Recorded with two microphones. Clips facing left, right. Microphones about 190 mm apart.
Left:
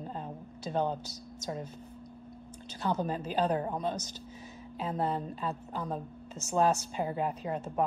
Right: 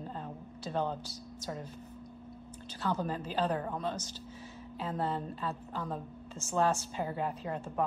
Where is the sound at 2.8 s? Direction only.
20° left (ahead or behind).